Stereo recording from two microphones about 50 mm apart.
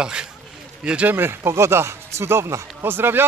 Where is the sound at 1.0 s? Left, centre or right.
Right.